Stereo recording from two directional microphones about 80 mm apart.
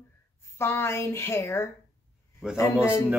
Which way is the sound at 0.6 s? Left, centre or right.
Left.